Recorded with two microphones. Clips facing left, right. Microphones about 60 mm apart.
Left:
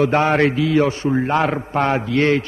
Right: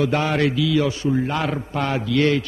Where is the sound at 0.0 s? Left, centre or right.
Left.